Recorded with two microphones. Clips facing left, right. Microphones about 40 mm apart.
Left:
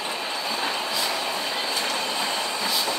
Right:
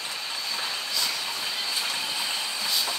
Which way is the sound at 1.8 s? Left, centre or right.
Centre.